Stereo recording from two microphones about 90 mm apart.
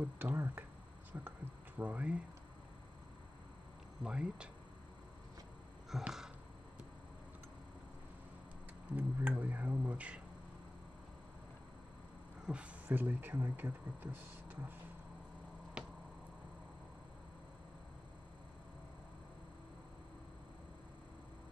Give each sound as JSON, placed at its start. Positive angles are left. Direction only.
{"t": 0.0, "sound": "speech", "side_deg": -20}
{"t": 1.8, "sound": "speech", "side_deg": -15}
{"t": 4.0, "sound": "speech", "side_deg": -10}
{"t": 5.9, "sound": "a sound", "side_deg": -5}
{"t": 8.9, "sound": "a sound", "side_deg": -20}
{"t": 12.4, "sound": "speech", "side_deg": -15}